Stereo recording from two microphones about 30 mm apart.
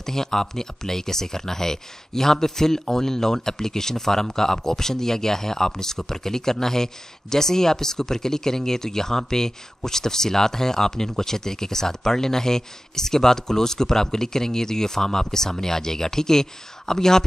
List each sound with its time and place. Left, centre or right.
0.0 s speech: centre